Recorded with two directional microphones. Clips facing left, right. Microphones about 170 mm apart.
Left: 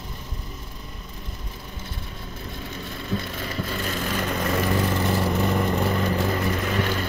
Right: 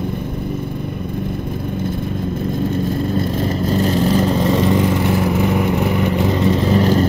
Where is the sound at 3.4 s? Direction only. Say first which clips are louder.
Right 12 dB; 35° right (ahead or behind).